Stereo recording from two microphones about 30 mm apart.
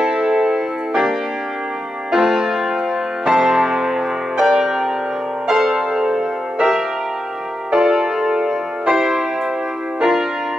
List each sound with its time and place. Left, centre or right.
0.0 s music: right
2.1 s music: centre
5.9 s music: right
7.7 s music: centre